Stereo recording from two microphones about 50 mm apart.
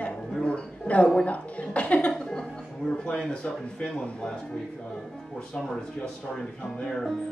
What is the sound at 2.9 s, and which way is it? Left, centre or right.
Speech, left.